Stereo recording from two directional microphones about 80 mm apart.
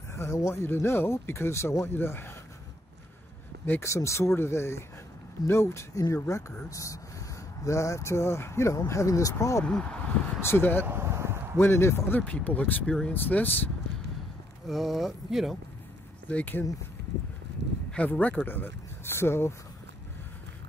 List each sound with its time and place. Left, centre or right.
0.1 s speech: left
3.8 s speech: left
9.7 s speech: centre
10.4 s speech: left
10.9 s a sound: right
11.5 s speech: left
12.2 s speech: centre
14.7 s speech: centre
16.3 s speech: left
17.9 s speech: centre